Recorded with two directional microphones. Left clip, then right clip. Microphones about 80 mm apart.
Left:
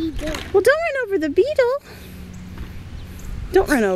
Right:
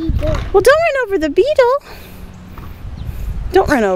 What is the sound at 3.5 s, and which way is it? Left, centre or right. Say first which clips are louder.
Speech: right 5 dB; centre.